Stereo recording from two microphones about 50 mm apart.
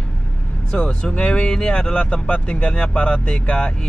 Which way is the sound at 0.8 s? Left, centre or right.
Centre.